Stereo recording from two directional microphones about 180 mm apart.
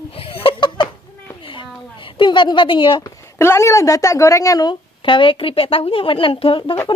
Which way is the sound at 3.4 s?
15° left (ahead or behind).